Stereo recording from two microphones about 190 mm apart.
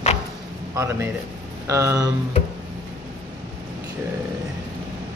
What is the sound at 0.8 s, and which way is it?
Speech, 15° right (ahead or behind).